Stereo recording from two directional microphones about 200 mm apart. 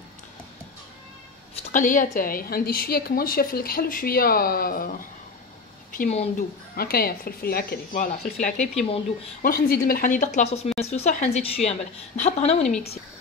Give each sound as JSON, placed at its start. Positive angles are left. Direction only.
{"t": 1.7, "sound": "a woman's voice", "side_deg": 40}
{"t": 6.7, "sound": "a woman's voice", "side_deg": 50}
{"t": 9.4, "sound": "a woman's voice", "side_deg": 50}